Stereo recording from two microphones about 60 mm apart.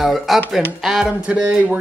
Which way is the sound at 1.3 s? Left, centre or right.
Right.